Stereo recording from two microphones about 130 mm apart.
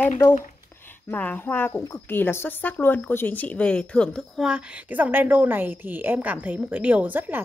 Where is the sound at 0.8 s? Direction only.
15° left (ahead or behind).